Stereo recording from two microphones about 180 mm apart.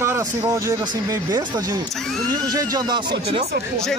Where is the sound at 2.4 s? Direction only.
20° right (ahead or behind).